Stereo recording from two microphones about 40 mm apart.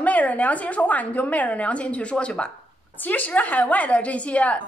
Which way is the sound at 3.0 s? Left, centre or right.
Left.